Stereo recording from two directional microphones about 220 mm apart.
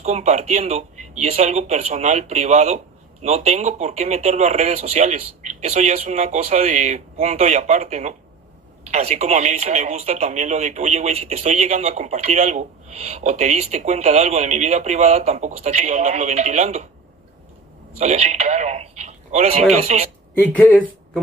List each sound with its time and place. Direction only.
0.0 s a man's voice: 30° right (ahead or behind)
17.9 s speech: 30° right (ahead or behind)
20.3 s speech: 10° left (ahead or behind)